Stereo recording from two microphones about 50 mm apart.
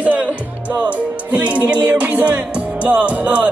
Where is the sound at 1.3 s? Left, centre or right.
Right.